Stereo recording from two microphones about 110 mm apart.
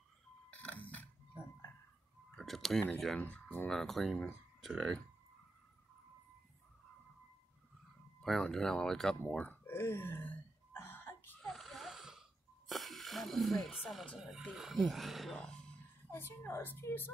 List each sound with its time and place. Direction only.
0.5 s a sound: 15° left (ahead or behind)
2.3 s tick-tock: 5° left (ahead or behind)
3.2 s speech: 15° left (ahead or behind)
8.2 s speech: 5° left (ahead or behind)
9.3 s throat clearing: 15° left (ahead or behind)
11.4 s wheeze: centre (ahead or behind)
14.1 s speech: 5° right (ahead or behind)
16.1 s a woman's voice: 20° left (ahead or behind)